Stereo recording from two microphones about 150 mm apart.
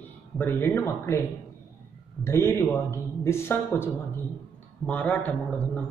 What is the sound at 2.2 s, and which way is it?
Speech, 15° left (ahead or behind).